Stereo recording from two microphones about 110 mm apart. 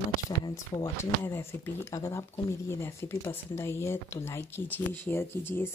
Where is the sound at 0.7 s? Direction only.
40° left (ahead or behind).